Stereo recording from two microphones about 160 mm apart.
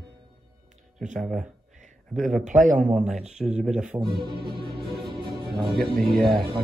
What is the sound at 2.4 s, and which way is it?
Speech, 50° right (ahead or behind).